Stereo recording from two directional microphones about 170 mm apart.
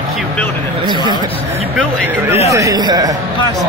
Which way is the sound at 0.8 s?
25° right (ahead or behind).